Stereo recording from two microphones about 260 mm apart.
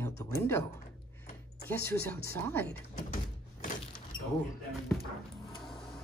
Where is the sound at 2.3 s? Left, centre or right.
Centre.